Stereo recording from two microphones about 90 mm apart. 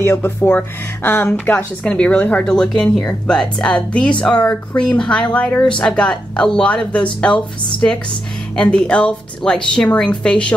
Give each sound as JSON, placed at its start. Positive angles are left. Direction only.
{"t": 0.0, "sound": "a woman's voice", "side_deg": 25}